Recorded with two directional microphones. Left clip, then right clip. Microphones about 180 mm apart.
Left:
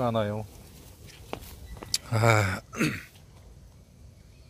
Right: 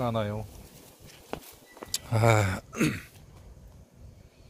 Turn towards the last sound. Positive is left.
turn(degrees=-15)  # may be behind; listen again after turning